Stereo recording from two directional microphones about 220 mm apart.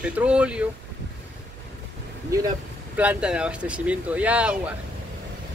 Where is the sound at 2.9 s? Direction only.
5° right (ahead or behind).